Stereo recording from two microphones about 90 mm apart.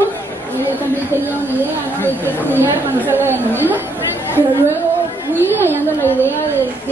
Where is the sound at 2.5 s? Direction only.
20° right (ahead or behind).